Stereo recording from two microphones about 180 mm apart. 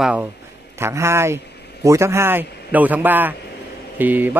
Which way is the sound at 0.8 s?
15° right (ahead or behind).